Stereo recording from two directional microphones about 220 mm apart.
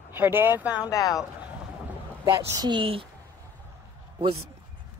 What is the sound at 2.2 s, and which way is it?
Speech, 20° right (ahead or behind).